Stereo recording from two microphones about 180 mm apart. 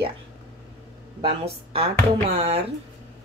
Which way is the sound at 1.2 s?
35° right (ahead or behind).